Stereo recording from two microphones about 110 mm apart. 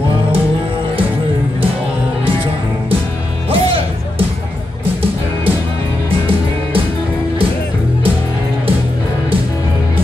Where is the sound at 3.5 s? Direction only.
55° right (ahead or behind).